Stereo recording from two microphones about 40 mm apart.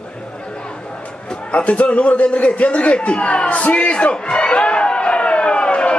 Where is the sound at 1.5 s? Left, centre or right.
Left.